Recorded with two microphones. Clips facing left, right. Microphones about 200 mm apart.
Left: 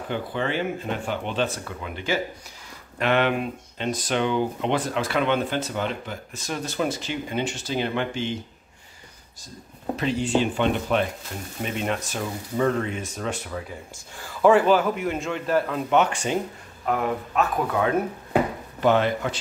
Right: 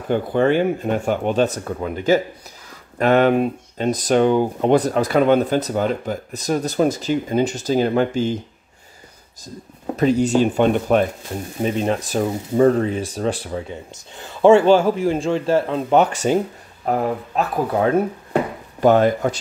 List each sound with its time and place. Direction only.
0.1 s speech: 50° right (ahead or behind)
9.9 s speech: 45° right (ahead or behind)
11.6 s speech: 35° right (ahead or behind)